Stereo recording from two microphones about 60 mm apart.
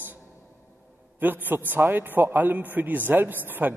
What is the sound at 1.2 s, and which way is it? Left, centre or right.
A man's voice, right.